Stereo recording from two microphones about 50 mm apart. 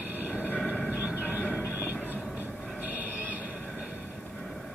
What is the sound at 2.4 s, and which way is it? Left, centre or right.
Train, right.